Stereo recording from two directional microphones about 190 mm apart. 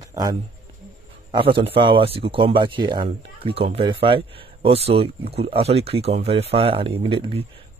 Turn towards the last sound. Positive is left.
turn(degrees=-30)  # may be behind; listen again after turning